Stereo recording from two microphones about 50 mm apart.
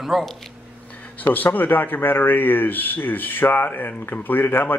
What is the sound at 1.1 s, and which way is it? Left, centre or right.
Speech, left.